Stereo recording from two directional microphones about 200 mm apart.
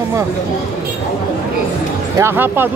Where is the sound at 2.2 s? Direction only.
10° right (ahead or behind).